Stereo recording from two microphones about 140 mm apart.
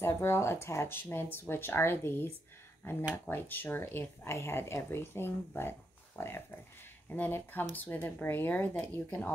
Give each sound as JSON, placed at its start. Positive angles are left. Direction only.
{"t": 0.0, "sound": "speech", "side_deg": 20}